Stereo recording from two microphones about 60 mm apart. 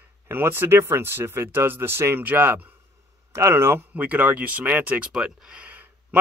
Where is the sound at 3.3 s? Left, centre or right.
Right.